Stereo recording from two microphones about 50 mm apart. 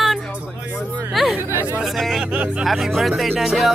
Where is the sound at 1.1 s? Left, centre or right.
Centre.